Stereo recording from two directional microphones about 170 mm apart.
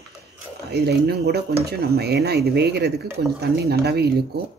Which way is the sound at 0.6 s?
75° right (ahead or behind).